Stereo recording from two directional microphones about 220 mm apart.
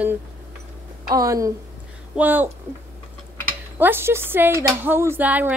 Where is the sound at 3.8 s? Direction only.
10° right (ahead or behind).